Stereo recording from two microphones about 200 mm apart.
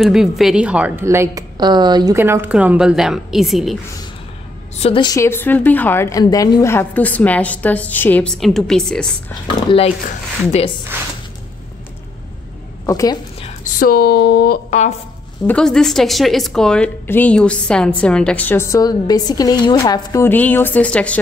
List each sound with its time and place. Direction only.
0.0 s a woman's voice: centre (ahead or behind)
4.7 s a woman's voice: 25° left (ahead or behind); by 9.1 s 5° left (ahead or behind)
9.7 s speech: 25° left (ahead or behind)
10.9 s a woman's voice: 10° right (ahead or behind)
12.8 s a woman's voice: 15° left (ahead or behind)
13.7 s speech: 50° left (ahead or behind)
15.4 s a woman's voice: 5° left (ahead or behind)